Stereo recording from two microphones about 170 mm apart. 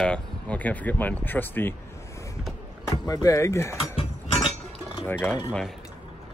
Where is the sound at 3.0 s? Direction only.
20° left (ahead or behind).